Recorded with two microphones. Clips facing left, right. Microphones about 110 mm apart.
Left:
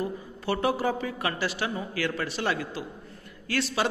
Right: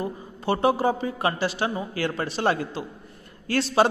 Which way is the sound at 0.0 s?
25° right (ahead or behind).